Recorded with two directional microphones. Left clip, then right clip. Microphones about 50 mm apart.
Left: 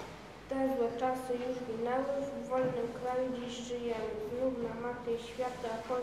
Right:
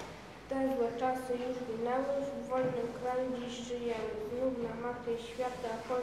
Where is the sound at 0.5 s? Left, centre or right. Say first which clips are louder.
Even; centre.